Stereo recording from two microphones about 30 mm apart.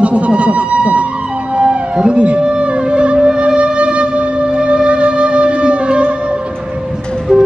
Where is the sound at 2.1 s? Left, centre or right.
Right.